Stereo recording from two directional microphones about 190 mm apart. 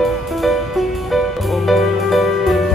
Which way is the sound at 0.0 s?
Centre (ahead or behind).